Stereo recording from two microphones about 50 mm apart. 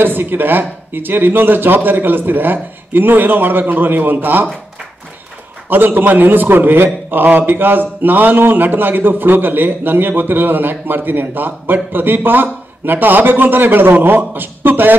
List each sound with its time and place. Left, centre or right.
0.0 s a man's voice: right
5.7 s a man's voice: right